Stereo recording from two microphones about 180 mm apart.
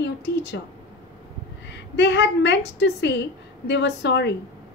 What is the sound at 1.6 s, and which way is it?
A woman's voice, 75° left (ahead or behind).